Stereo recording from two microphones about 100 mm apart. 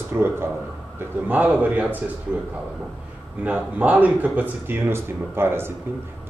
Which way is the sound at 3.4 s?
15° right (ahead or behind).